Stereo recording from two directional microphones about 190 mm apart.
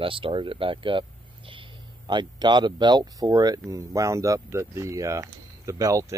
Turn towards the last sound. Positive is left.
turn(degrees=-15)  # may be behind; listen again after turning